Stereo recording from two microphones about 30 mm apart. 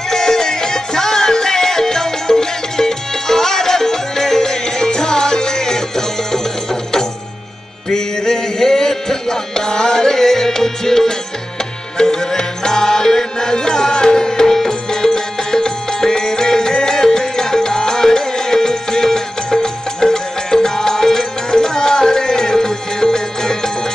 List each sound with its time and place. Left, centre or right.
0.1 s music: centre